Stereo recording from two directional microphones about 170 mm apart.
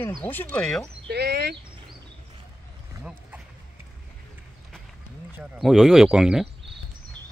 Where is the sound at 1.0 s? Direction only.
75° right (ahead or behind).